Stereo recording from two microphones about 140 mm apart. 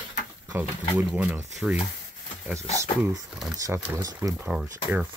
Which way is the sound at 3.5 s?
25° right (ahead or behind).